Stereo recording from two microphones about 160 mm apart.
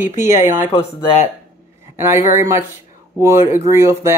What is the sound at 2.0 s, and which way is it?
Speech, 15° right (ahead or behind).